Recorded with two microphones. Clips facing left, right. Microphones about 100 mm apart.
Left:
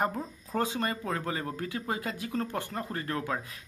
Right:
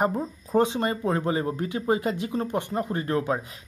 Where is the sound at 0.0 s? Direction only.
20° right (ahead or behind).